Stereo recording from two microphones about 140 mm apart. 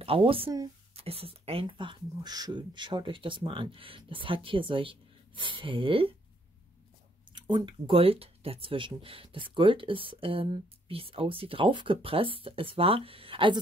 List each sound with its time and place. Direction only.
0.0 s speech: 40° right (ahead or behind)
7.3 s speech: 30° right (ahead or behind)